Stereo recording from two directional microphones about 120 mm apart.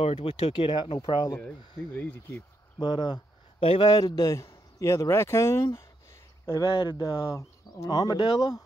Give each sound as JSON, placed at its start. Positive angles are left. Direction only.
{"t": 0.0, "sound": "speech", "side_deg": 55}
{"t": 2.8, "sound": "speech", "side_deg": 40}
{"t": 3.9, "sound": "a man's voice", "side_deg": 30}